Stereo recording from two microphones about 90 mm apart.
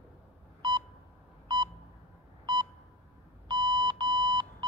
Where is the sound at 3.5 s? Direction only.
55° right (ahead or behind).